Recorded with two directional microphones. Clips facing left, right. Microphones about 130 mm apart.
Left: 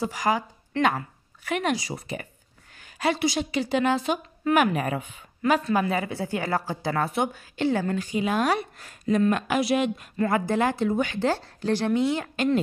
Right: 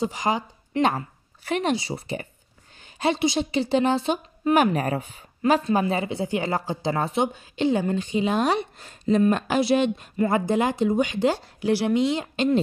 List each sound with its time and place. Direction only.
0.0 s a woman's voice: 20° right (ahead or behind)